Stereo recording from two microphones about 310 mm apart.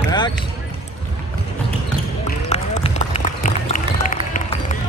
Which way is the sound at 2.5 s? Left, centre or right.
Left.